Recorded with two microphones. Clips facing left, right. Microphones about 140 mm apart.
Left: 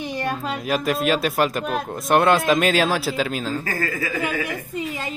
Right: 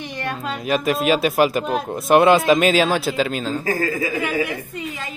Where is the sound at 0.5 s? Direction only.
Centre (ahead or behind).